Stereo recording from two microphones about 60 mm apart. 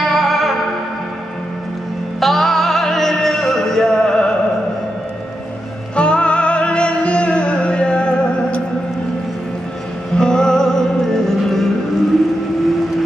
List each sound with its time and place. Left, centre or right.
0.0 s music: centre
2.1 s music: centre
5.9 s music: centre
10.1 s music: centre